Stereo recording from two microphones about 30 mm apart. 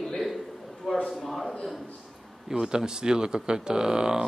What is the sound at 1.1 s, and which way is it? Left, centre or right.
Speech, centre.